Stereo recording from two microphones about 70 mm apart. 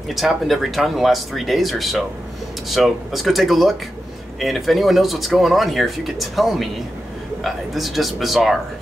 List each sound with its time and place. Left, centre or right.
0.1 s speech: centre